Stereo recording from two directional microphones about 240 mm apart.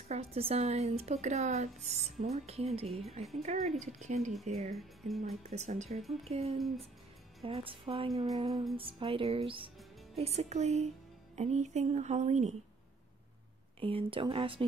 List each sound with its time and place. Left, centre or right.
0.1 s speech: right
4.7 s speech: centre
5.4 s speech: right
13.7 s speech: right